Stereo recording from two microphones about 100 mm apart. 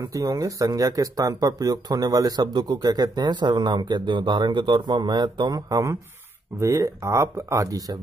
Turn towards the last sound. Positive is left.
turn(degrees=-35)  # may be behind; listen again after turning